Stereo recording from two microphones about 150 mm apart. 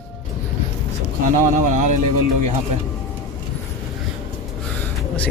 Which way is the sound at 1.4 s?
55° right (ahead or behind).